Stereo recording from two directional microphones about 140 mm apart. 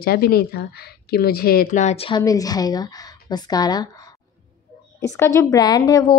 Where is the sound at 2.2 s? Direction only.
25° left (ahead or behind).